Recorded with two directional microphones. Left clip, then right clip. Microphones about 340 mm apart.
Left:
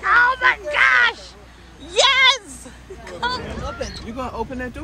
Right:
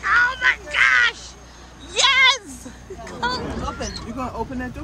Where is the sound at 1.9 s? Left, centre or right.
Centre.